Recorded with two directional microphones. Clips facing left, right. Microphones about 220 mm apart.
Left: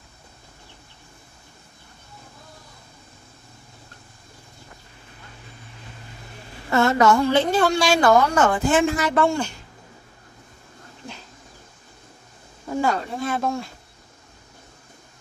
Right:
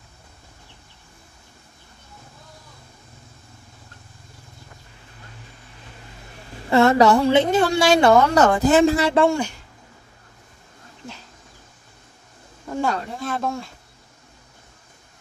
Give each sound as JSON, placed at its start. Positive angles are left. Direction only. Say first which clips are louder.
{"t": 6.7, "sound": "a sound", "louder": "right 3 dB", "side_deg": -35}
{"t": 7.3, "sound": "speech", "louder": "right 2 dB", "side_deg": -20}
{"t": 8.4, "sound": "speech", "louder": "right 4 dB", "side_deg": -40}
{"t": 12.6, "sound": "speech", "louder": "left 1 dB", "side_deg": 5}